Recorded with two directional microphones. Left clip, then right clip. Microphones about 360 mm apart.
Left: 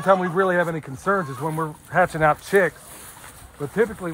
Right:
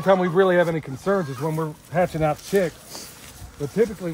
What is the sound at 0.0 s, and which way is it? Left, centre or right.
Speech, centre.